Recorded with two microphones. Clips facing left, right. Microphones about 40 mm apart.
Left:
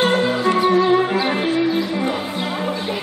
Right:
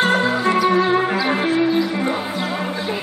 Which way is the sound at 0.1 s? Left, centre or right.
Right.